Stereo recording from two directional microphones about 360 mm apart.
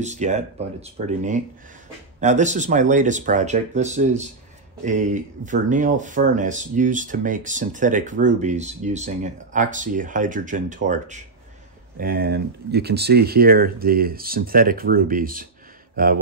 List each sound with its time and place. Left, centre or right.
0.0 s speech: centre